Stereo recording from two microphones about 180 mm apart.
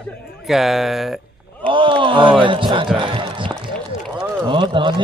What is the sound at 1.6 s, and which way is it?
Speech, 30° right (ahead or behind).